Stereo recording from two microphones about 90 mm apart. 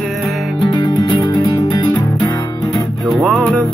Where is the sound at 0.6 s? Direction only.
55° left (ahead or behind).